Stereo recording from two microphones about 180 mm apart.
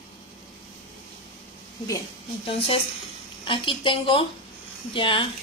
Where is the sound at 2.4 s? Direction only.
30° left (ahead or behind).